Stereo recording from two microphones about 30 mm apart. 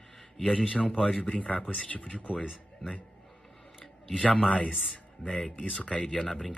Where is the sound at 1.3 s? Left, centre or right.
Left.